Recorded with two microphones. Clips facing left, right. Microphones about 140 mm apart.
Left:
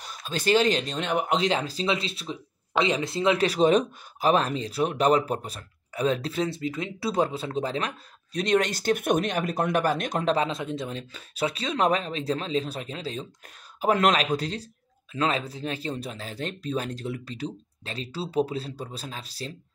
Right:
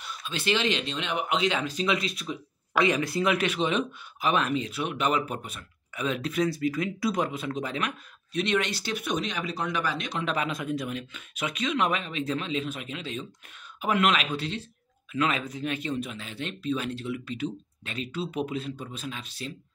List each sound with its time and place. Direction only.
0.0 s speech: 40° left (ahead or behind)
10.3 s speech: 25° left (ahead or behind)